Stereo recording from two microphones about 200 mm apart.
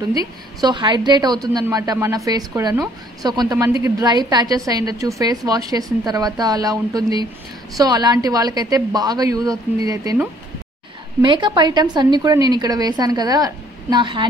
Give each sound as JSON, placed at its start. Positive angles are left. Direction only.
{"t": 0.6, "sound": "a woman's voice", "side_deg": -20}
{"t": 11.1, "sound": "a woman's voice", "side_deg": -25}